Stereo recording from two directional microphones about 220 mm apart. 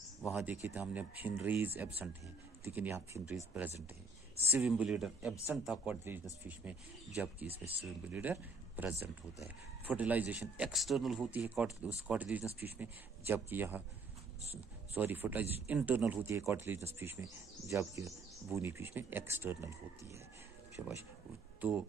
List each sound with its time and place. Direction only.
0.2 s speech: 5° right (ahead or behind)
7.4 s speech: 25° right (ahead or behind)
7.8 s speech: 5° right (ahead or behind)